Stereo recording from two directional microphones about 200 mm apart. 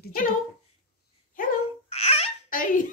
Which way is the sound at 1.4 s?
30° left (ahead or behind).